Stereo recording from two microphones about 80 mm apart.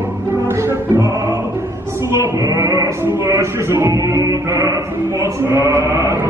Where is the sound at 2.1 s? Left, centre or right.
Right.